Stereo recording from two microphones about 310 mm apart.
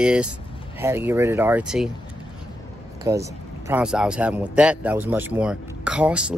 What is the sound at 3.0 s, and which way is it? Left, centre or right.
Speech, centre.